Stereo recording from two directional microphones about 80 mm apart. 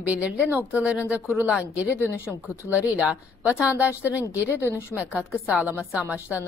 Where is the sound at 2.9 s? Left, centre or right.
Centre.